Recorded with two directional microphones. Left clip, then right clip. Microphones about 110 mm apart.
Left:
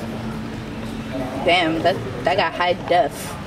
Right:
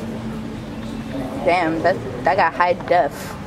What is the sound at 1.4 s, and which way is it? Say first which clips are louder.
Speech: even; 10° left (ahead or behind).